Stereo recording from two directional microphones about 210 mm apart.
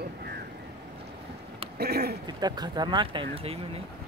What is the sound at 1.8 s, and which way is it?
Speech, 50° right (ahead or behind).